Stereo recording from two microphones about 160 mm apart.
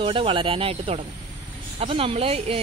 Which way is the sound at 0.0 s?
35° right (ahead or behind).